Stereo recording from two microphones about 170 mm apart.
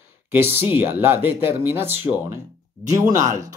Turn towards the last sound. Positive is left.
turn(degrees=-20)  # may be behind; listen again after turning